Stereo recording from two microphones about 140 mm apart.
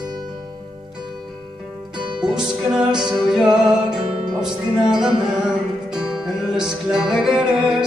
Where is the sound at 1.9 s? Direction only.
5° right (ahead or behind).